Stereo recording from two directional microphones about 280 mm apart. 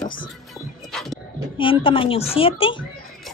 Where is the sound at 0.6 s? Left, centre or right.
Centre.